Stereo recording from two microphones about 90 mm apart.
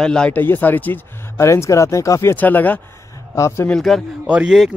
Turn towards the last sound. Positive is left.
turn(degrees=-15)  # may be behind; listen again after turning